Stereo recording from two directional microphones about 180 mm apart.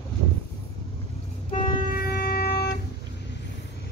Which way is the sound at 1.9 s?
60° left (ahead or behind).